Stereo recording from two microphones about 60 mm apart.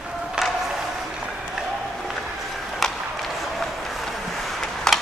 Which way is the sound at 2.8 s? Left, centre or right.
Centre.